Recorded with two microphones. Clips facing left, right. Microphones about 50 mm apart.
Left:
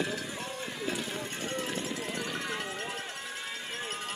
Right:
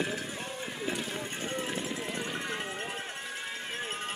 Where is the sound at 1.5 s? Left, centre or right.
Centre.